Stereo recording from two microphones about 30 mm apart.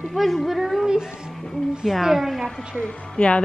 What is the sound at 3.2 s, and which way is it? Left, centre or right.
Speech, left.